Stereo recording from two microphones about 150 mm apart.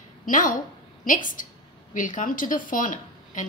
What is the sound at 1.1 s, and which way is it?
A woman's voice, 60° left (ahead or behind).